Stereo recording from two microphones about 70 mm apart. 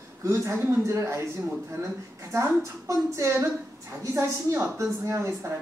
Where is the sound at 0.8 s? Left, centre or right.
Right.